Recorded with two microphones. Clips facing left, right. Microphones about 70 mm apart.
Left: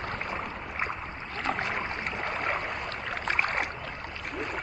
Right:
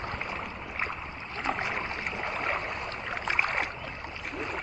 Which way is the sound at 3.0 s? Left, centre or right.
Centre.